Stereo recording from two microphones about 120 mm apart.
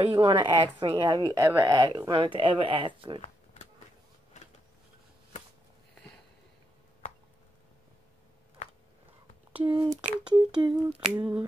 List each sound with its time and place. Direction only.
0.1 s speech: 45° right (ahead or behind)
9.6 s speech: 45° right (ahead or behind)
10.9 s a sound: 10° right (ahead or behind)